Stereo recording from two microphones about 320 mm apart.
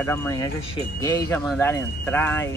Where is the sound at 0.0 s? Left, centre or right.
Centre.